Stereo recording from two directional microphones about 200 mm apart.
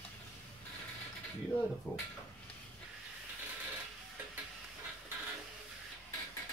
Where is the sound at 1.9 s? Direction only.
5° left (ahead or behind).